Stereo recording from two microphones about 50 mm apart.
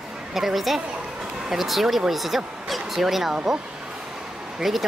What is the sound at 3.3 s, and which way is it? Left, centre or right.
Speech, centre.